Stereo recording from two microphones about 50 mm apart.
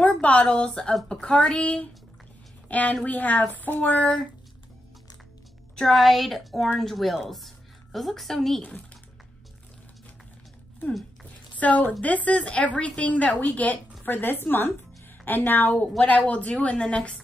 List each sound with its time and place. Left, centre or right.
0.0 s a woman's voice: left
5.9 s a woman's voice: centre
11.6 s a woman's voice: left
14.0 s a woman's voice: left
16.2 s a woman's voice: left